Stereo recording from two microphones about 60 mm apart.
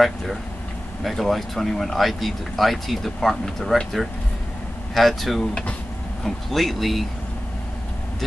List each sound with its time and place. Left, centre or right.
0.0 s speech: centre
5.5 s speech: centre
6.2 s speech: centre